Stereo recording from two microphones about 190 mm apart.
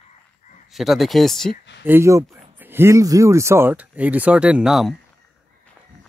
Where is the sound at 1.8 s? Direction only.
10° right (ahead or behind).